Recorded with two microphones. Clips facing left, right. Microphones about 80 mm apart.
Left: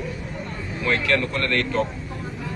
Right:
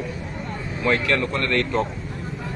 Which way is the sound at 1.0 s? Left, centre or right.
Right.